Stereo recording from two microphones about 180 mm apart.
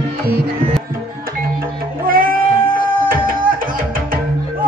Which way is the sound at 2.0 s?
55° right (ahead or behind).